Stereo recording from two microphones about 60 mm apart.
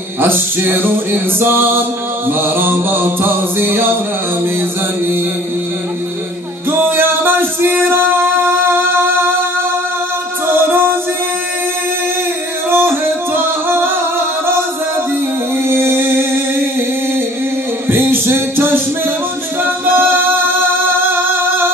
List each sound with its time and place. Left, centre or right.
0.2 s music: right
6.7 s music: right
10.5 s music: right
12.7 s singing: right
15.7 s music: right
17.8 s music: right